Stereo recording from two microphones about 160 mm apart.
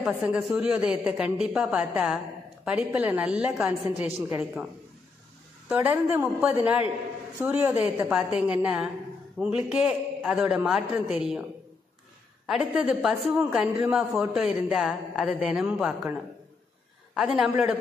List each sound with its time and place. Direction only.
0.0 s a woman's voice: 5° right (ahead or behind)
5.7 s a woman's voice: 10° right (ahead or behind)
12.4 s a woman's voice: centre (ahead or behind)